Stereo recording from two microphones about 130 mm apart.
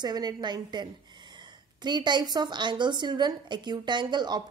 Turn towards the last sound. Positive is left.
turn(degrees=-35)  # may be behind; listen again after turning